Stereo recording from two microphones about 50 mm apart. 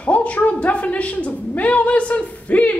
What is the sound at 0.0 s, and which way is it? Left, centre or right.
A woman's voice, left.